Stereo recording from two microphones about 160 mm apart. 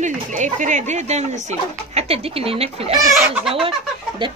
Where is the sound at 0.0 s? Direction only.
50° right (ahead or behind).